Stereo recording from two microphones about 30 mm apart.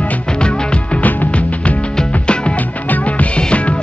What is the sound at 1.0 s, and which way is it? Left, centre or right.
Music, left.